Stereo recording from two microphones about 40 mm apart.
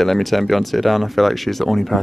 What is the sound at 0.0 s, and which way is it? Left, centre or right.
Speech, centre.